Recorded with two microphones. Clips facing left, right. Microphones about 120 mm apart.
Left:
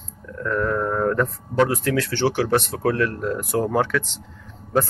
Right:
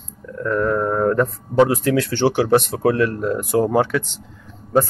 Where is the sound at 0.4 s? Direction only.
15° right (ahead or behind).